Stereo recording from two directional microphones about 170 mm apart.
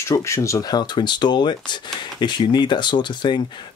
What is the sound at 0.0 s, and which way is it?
Speech, 15° left (ahead or behind).